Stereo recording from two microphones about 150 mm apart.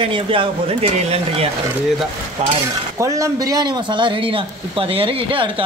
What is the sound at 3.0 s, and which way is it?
A man's voice, 20° right (ahead or behind).